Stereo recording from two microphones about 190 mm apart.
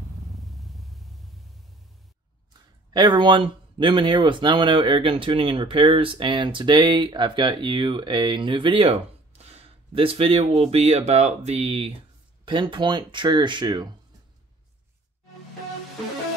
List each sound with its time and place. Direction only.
0.3 s vehicle: centre (ahead or behind)
2.9 s speech: 25° right (ahead or behind)